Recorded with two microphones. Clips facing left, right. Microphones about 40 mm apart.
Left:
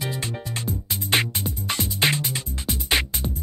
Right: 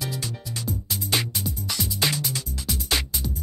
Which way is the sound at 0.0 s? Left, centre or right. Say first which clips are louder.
Left 3 dB; left.